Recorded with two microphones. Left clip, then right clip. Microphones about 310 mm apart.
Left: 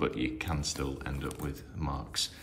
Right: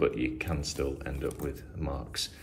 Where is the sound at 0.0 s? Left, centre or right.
Centre.